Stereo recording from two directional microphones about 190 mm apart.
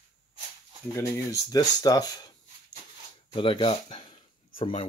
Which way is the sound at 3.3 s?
25° left (ahead or behind).